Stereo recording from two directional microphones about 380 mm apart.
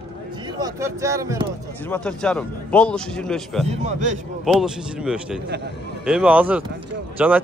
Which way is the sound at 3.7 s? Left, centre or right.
Centre.